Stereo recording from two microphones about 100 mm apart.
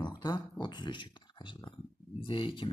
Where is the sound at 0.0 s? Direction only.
40° left (ahead or behind).